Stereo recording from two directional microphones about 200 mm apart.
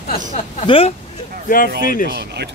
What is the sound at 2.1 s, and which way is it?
Speech, 55° right (ahead or behind).